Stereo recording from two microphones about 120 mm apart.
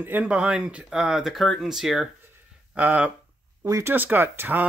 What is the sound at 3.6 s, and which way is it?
Speech, 30° right (ahead or behind).